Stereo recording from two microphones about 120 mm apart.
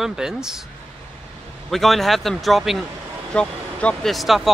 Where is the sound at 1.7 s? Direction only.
Centre (ahead or behind).